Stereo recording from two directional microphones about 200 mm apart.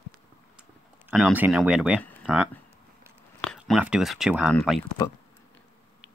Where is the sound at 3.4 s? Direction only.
5° left (ahead or behind).